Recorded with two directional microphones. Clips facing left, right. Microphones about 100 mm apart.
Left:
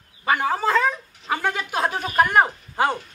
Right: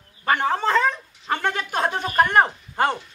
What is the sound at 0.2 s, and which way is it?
A child's voice, 5° left (ahead or behind).